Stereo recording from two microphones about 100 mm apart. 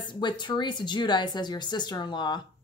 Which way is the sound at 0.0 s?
50° left (ahead or behind).